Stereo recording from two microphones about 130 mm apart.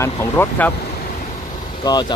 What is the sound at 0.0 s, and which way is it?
Speech, 20° left (ahead or behind).